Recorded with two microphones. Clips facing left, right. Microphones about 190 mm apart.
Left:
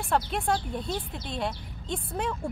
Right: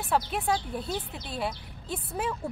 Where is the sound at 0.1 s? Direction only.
5° right (ahead or behind).